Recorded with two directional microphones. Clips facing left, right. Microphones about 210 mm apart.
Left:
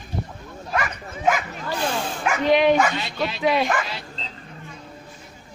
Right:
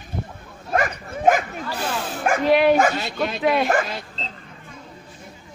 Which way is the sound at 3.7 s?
45° right (ahead or behind).